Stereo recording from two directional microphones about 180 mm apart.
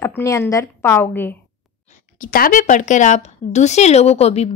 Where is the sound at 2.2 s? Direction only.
50° left (ahead or behind).